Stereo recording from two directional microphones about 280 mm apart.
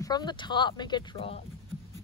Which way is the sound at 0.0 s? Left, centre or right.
Centre.